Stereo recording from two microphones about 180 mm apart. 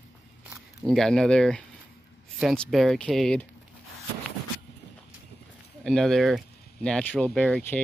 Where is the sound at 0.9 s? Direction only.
Centre (ahead or behind).